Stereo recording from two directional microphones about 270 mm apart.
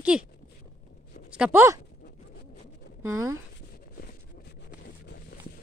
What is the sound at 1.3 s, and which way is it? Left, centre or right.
Speech, centre.